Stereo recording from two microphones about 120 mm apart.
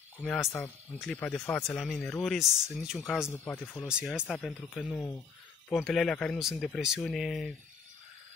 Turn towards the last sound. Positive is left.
turn(degrees=0)  # may be behind; listen again after turning